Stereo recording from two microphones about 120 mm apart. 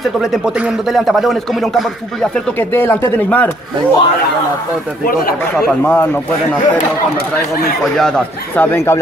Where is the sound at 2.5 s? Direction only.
15° left (ahead or behind).